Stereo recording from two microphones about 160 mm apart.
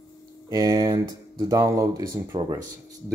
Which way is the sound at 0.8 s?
30° right (ahead or behind).